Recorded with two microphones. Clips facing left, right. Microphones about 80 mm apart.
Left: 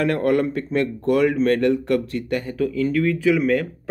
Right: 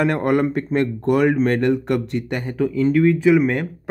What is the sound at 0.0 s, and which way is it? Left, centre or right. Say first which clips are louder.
Speech: right 1 dB; right.